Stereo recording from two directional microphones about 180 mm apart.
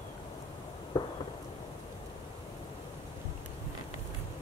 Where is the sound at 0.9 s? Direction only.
25° left (ahead or behind).